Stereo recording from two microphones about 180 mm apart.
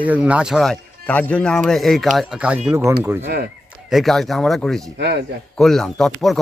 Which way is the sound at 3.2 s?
65° right (ahead or behind).